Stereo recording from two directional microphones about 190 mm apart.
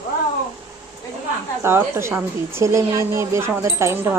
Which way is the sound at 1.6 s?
15° right (ahead or behind).